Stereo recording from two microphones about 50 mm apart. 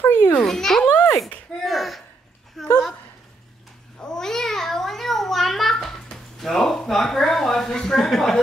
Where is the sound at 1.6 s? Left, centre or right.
Centre.